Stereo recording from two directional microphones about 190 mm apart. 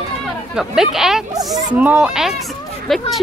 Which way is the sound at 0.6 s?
5° right (ahead or behind).